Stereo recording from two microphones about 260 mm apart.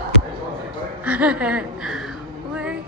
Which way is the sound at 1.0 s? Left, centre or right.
Centre.